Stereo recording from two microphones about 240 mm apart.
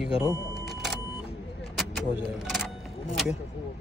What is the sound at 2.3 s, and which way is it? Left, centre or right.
Single-lens reflex camera, centre.